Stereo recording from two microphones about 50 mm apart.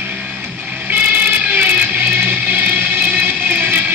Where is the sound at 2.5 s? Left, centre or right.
Right.